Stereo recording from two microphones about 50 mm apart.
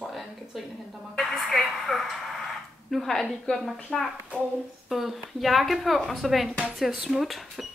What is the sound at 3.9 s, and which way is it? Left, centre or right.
Speech, centre.